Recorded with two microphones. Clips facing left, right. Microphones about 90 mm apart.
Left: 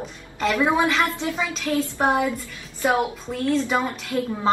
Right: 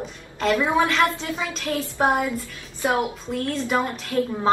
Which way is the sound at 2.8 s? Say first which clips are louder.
Left 1 dB; 10° left (ahead or behind).